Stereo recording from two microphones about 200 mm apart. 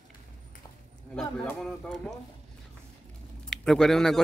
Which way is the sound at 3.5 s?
5° left (ahead or behind).